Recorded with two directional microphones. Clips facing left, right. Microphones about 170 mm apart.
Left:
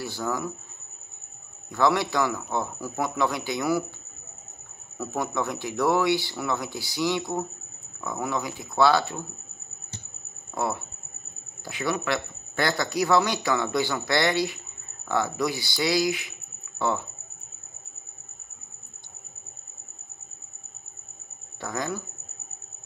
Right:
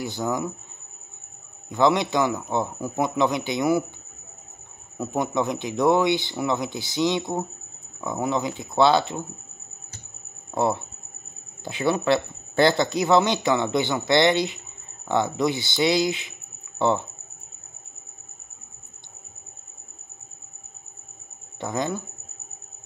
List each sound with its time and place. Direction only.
0.0 s speech: 20° right (ahead or behind)
1.7 s speech: 20° right (ahead or behind)
4.9 s speech: 20° right (ahead or behind)
10.5 s speech: 25° right (ahead or behind)
21.5 s speech: 20° right (ahead or behind)